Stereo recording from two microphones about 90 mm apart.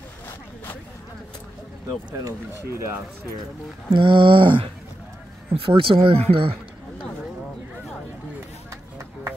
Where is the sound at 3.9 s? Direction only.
65° right (ahead or behind).